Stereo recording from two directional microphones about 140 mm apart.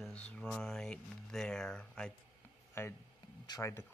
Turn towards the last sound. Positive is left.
turn(degrees=25)  # may be behind; listen again after turning